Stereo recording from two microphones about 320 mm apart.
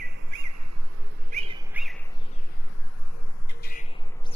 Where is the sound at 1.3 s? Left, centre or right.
Right.